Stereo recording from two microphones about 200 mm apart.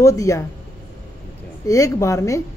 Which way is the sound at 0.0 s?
15° left (ahead or behind).